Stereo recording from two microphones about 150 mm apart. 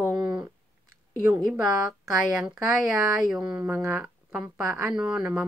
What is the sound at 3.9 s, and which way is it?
Speech, 10° right (ahead or behind).